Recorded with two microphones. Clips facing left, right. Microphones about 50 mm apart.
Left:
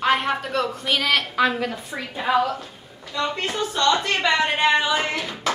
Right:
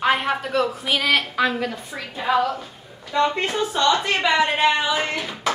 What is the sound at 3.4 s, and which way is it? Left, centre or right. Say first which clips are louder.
A woman's voice: right 1 dB; centre.